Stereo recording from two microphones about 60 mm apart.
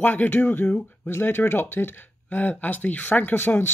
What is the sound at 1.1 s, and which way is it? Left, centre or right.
Speech, left.